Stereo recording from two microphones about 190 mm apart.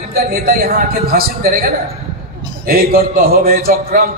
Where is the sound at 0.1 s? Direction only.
55° right (ahead or behind).